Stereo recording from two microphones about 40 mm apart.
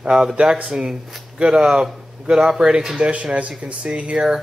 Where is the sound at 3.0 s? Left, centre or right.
Right.